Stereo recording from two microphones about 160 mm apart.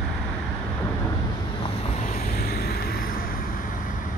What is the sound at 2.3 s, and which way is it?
Vehicle, 75° left (ahead or behind).